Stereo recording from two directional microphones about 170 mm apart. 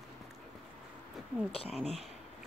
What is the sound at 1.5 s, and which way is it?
Speech, 35° left (ahead or behind).